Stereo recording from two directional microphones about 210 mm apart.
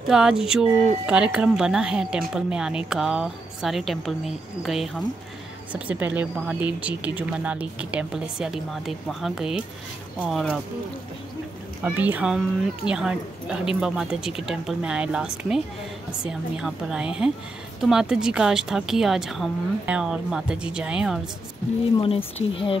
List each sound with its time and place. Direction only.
0.1 s a woman's voice: 5° right (ahead or behind)
11.8 s a woman's voice: 10° right (ahead or behind)
21.9 s speech: 25° left (ahead or behind)